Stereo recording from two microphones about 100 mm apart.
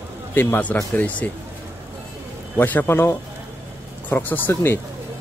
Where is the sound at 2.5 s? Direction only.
20° left (ahead or behind).